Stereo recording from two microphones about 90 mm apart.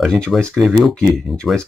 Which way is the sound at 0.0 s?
5° left (ahead or behind).